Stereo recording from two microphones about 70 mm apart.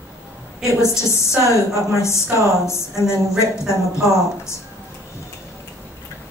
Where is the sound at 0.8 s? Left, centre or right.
Left.